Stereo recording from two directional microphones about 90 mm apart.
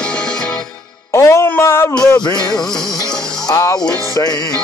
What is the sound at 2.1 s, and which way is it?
Music, 50° left (ahead or behind).